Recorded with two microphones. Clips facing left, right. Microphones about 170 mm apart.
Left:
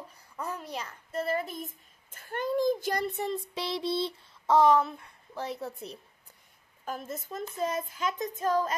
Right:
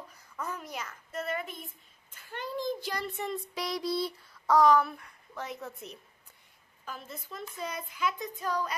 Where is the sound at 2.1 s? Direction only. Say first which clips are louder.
Left 7 dB; 50° left (ahead or behind); by 5.9 s 35° left (ahead or behind).